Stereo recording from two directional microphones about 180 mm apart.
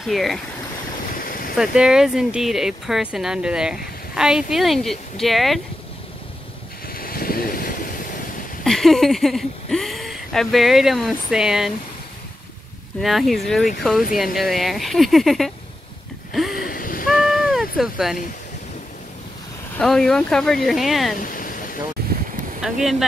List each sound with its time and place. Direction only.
0.0 s speech: centre (ahead or behind)
1.2 s a sound: 50° left (ahead or behind)
1.6 s speech: 5° right (ahead or behind)
6.9 s vehicle: 55° left (ahead or behind)
8.6 s speech: centre (ahead or behind)
13.0 s speech: centre (ahead or behind)
16.5 s wheeze: 55° left (ahead or behind)
17.2 s a sound: centre (ahead or behind)
19.8 s speech: centre (ahead or behind)
21.2 s a sound: 50° left (ahead or behind)
22.6 s speech: centre (ahead or behind)